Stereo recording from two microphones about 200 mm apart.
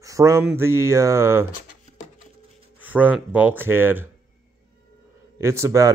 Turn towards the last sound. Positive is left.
turn(degrees=-15)  # may be behind; listen again after turning